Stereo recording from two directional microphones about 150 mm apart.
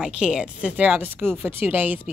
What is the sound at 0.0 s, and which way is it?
A woman's voice, 5° right (ahead or behind).